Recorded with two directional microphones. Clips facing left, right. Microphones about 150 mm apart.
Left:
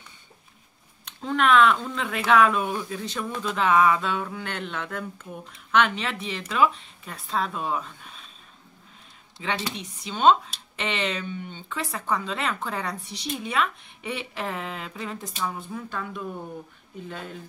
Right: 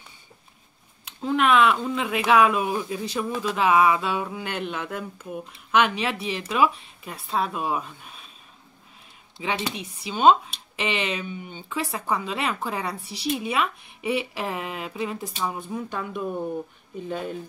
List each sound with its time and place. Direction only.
1.0 s speech: 5° right (ahead or behind)
9.4 s speech: 10° right (ahead or behind)